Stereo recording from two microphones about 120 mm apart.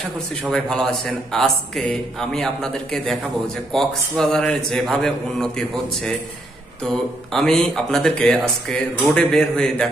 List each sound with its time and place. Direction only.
0.4 s a man's voice: 5° left (ahead or behind)
7.3 s a man's voice: 5° left (ahead or behind)